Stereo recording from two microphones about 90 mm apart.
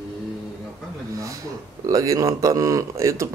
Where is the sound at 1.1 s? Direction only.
35° right (ahead or behind).